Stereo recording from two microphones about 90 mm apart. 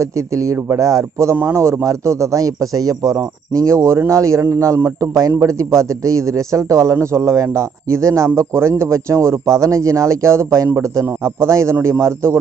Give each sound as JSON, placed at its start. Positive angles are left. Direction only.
{"t": 0.0, "sound": "a man's voice", "side_deg": -35}